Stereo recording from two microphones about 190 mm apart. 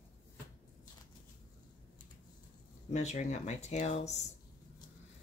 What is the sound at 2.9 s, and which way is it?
Speech, 35° left (ahead or behind).